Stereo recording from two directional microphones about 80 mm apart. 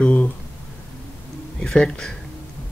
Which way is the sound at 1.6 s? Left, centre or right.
Centre.